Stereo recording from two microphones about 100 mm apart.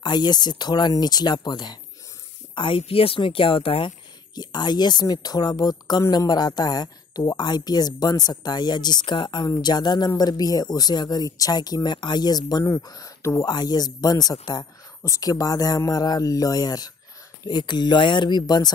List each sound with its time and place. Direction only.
0.0 s speech: 45° left (ahead or behind)
2.5 s speech: 60° left (ahead or behind)
4.4 s speech: 45° left (ahead or behind)